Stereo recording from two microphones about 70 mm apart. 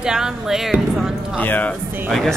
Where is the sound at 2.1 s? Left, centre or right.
Centre.